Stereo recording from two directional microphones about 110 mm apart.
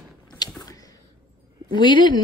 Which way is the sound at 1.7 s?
45° left (ahead or behind).